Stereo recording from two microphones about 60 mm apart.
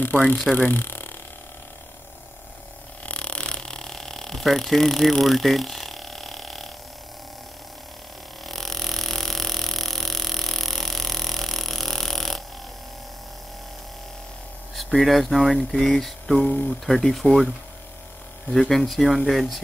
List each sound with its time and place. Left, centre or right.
0.1 s speech: left
3.1 s a sound: centre
8.5 s a sound: centre
14.8 s speech: centre
16.4 s speech: left
16.8 s speech: centre
18.5 s speech: centre